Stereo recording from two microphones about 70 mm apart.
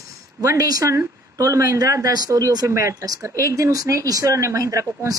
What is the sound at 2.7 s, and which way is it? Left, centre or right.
Speech, right.